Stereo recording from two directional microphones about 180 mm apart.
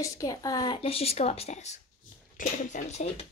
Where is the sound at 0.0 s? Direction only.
20° left (ahead or behind).